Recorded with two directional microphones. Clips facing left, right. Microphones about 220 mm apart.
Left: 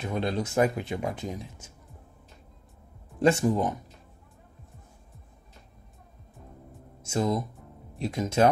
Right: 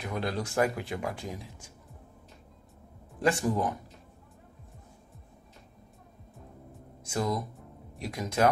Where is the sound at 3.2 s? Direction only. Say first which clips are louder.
Left 4 dB; 25° left (ahead or behind).